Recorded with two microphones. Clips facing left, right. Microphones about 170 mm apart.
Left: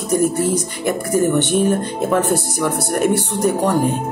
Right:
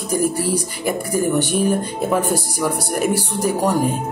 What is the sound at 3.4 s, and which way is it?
Music, 10° right (ahead or behind).